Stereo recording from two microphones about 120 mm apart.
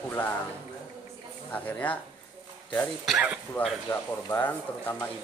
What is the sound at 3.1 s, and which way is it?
Speech, 5° right (ahead or behind).